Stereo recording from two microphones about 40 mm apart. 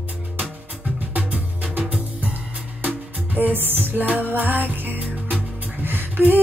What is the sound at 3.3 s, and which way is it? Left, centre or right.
Music, right.